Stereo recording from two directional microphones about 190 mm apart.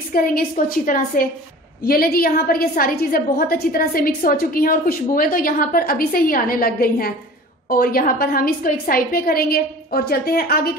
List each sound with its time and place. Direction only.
0.1 s a woman's voice: 50° left (ahead or behind)